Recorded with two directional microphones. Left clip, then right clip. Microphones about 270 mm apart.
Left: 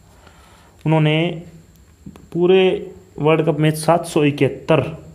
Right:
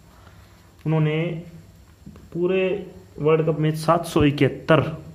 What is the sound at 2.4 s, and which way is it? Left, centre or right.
Speech, left.